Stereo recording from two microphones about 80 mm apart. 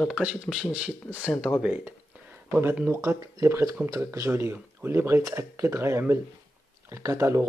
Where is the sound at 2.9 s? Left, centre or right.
Right.